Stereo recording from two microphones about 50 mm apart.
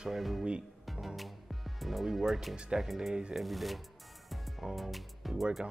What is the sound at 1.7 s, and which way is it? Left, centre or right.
Speech, centre.